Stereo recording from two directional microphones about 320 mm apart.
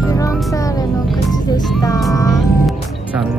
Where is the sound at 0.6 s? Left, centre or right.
Centre.